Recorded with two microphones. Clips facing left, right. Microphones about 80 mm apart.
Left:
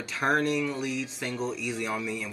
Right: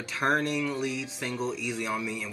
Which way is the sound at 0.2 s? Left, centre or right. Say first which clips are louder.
Left 1 dB; centre.